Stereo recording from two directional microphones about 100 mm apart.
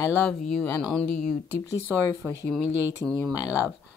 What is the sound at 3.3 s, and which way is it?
Speech, 35° left (ahead or behind).